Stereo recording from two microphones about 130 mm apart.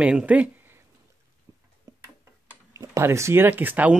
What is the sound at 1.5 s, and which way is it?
Tick-tock, 30° right (ahead or behind).